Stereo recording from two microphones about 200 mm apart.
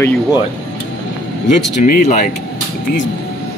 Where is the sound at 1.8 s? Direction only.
40° left (ahead or behind).